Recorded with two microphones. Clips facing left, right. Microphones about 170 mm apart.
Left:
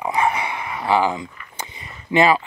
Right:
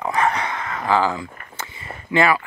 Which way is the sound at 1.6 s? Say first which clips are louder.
Left 1 dB; 20° left (ahead or behind).